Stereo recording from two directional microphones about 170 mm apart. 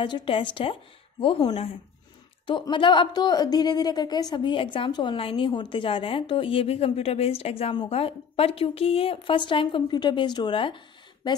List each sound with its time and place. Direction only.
0.0 s speech: 30° left (ahead or behind)